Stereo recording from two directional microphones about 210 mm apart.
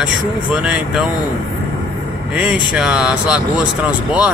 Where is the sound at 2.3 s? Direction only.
5° right (ahead or behind).